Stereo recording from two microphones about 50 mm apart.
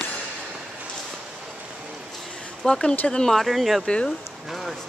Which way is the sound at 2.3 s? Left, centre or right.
Centre.